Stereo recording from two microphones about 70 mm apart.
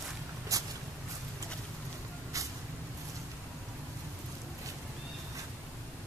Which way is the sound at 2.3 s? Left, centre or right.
Right.